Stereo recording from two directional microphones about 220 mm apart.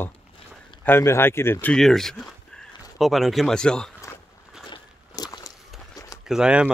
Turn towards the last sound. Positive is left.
turn(degrees=-5)  # may be behind; listen again after turning